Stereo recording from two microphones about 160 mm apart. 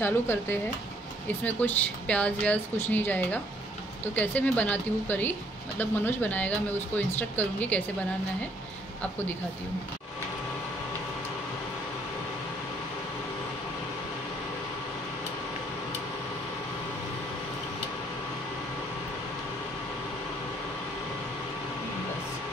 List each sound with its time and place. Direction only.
0.0 s speech: 15° left (ahead or behind)